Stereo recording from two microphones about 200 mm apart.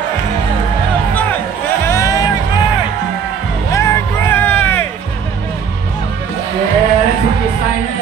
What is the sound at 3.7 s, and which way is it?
Music, 15° left (ahead or behind).